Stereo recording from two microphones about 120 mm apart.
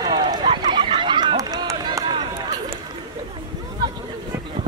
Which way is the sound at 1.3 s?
30° right (ahead or behind).